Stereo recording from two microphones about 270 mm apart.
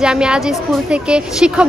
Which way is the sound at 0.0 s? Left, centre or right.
Centre.